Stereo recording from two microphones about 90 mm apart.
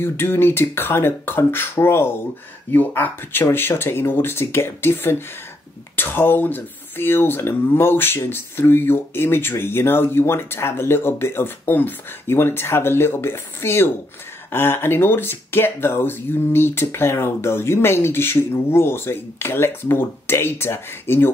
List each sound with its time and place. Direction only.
0.0 s speech: 25° left (ahead or behind)